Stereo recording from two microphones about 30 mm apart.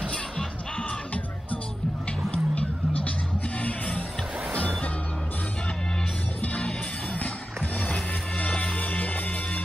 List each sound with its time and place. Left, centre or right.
0.7 s music: left
2.3 s music: left
6.4 s music: left
7.2 s music: left